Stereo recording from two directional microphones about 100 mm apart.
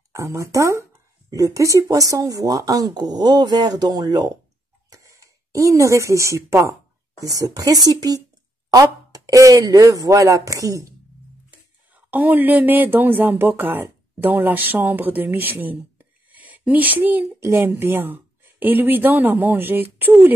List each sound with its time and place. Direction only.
0.1 s speech: 30° right (ahead or behind)
4.8 s speech: 30° right (ahead or behind)
11.9 s a woman's voice: 15° right (ahead or behind)